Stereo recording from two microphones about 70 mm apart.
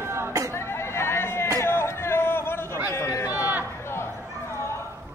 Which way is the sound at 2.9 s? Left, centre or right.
Left.